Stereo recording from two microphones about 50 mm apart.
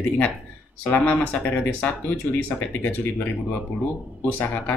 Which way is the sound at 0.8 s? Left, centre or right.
Left.